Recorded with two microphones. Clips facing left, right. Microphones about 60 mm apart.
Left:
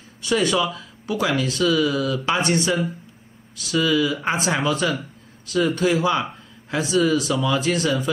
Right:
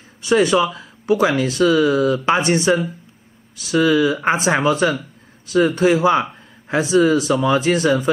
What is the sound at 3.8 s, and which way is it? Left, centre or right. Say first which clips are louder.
Speech: right 5 dB; right.